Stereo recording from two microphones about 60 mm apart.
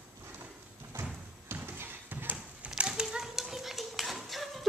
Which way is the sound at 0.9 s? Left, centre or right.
Right.